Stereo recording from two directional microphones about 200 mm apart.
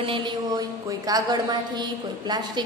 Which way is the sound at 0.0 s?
25° right (ahead or behind).